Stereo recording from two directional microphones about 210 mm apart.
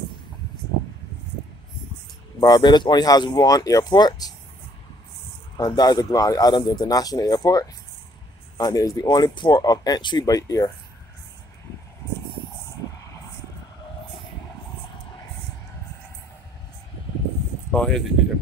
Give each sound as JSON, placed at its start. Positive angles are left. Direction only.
{"t": 2.4, "sound": "speech", "side_deg": 20}
{"t": 5.6, "sound": "speech", "side_deg": 20}
{"t": 17.7, "sound": "speech", "side_deg": 0}